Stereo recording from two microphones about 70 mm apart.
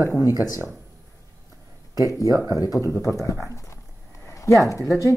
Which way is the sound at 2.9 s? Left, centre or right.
Left.